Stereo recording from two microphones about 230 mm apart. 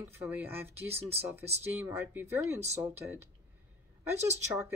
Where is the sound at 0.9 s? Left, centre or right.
Right.